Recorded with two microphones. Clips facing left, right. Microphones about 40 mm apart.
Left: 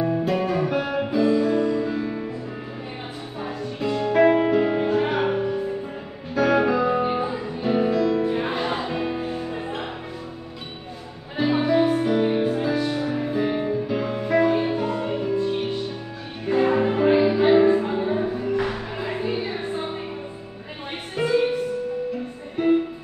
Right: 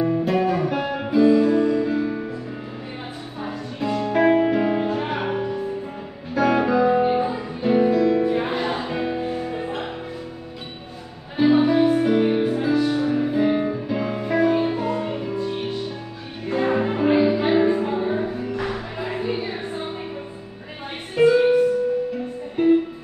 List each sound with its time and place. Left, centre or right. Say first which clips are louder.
0.0 s guitar: right 2 dB; centre
3.3 s music: even; centre
4.8 s music: left 3 dB; centre
5.1 s music: left 2 dB; centre
11.3 s music: right 3 dB; centre
21.2 s music: right 5 dB; centre